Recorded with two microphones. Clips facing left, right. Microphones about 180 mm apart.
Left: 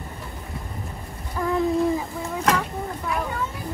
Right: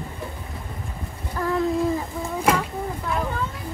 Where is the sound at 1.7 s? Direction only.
Centre (ahead or behind).